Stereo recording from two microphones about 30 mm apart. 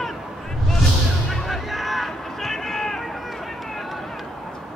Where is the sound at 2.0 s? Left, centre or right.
Centre.